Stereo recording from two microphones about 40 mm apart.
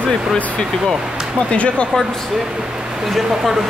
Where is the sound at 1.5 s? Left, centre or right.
Left.